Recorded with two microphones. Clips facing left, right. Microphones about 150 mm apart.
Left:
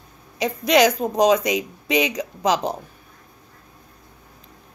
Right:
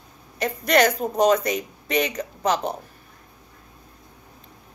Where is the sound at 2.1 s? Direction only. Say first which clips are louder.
Left 2 dB; 90° left.